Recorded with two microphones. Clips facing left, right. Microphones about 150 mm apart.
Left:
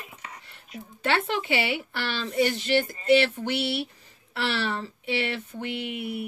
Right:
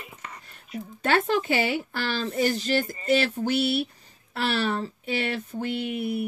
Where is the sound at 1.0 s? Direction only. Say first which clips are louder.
Right 3 dB; 45° right (ahead or behind).